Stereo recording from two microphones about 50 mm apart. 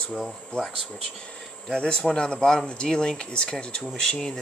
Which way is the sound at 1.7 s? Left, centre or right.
Centre.